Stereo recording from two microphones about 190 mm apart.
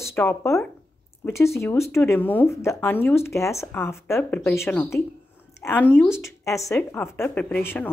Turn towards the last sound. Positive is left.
turn(degrees=10)  # may be behind; listen again after turning